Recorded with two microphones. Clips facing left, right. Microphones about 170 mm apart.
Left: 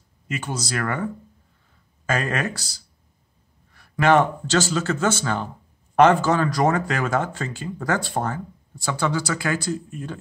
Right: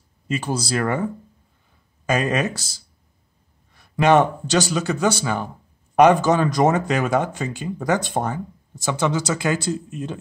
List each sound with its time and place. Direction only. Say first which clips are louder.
0.3 s a man's voice: right 5 dB; 30° right (ahead or behind)